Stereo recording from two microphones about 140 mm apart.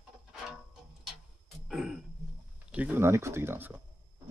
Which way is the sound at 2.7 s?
10° right (ahead or behind).